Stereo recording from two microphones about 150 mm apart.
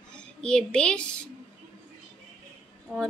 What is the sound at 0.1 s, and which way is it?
A child's voice, 5° left (ahead or behind).